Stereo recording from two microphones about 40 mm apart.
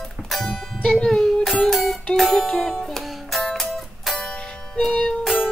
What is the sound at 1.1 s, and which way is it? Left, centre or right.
Child singing, centre.